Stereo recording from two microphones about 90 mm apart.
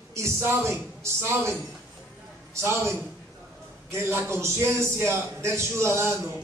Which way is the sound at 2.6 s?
30° right (ahead or behind).